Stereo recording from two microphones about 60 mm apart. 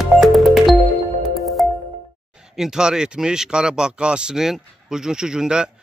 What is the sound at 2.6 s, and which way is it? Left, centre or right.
Speech, centre.